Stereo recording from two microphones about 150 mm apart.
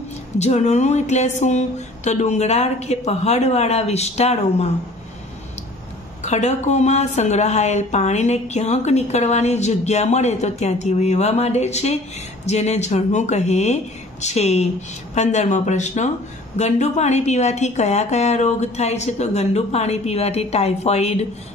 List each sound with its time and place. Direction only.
0.4 s a woman's voice: 50° left (ahead or behind)
6.2 s a woman's voice: 50° left (ahead or behind)